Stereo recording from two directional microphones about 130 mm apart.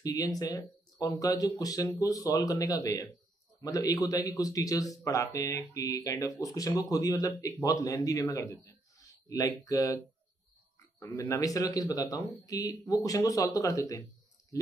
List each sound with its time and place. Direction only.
0.0 s speech: 25° left (ahead or behind)
11.0 s speech: 25° left (ahead or behind)